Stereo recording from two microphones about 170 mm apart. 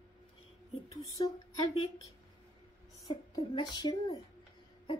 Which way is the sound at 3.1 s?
25° left (ahead or behind).